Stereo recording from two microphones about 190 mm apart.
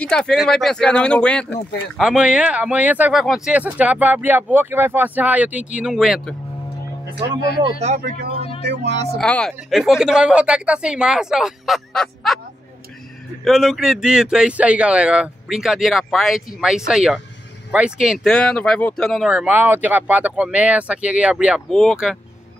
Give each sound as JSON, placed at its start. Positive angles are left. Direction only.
{"t": 0.0, "sound": "speech", "side_deg": 5}
{"t": 8.6, "sound": "speech", "side_deg": -65}
{"t": 9.2, "sound": "speech", "side_deg": 5}
{"t": 13.4, "sound": "speech", "side_deg": 0}